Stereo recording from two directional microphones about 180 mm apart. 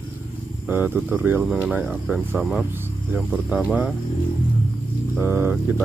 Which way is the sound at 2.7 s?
10° right (ahead or behind).